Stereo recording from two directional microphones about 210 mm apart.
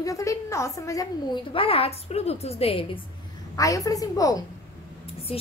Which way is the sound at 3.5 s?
15° left (ahead or behind).